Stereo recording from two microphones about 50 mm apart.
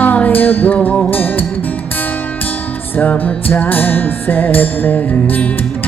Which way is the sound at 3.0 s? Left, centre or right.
Left.